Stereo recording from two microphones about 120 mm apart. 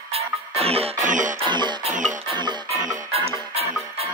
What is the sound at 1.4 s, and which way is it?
Music, 40° right (ahead or behind).